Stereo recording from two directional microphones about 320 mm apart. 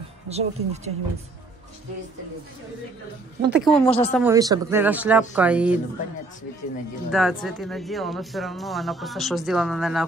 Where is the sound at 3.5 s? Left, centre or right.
Centre.